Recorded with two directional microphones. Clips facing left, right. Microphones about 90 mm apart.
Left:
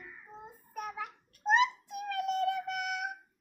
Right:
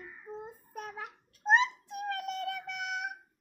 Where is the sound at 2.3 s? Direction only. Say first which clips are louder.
Left 6 dB; 40° left (ahead or behind).